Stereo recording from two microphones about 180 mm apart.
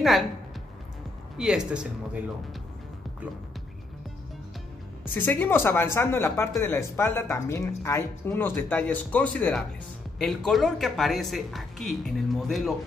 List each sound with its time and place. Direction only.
1.4 s speech: 5° right (ahead or behind)
5.1 s speech: 10° left (ahead or behind)